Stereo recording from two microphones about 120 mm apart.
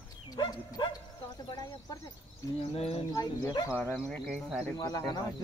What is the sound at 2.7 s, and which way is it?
Speech, 55° left (ahead or behind).